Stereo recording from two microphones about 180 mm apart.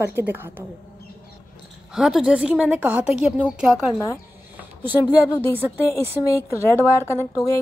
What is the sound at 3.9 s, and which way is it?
Speech, 15° left (ahead or behind).